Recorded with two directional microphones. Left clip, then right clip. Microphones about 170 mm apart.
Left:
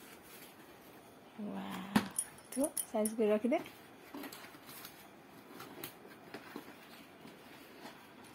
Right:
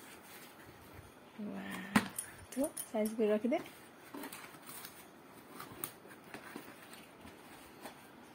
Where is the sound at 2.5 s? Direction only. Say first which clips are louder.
Left 1 dB; centre (ahead or behind).